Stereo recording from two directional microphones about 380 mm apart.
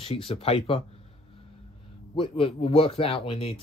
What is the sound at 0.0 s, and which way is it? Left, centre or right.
Speech, centre.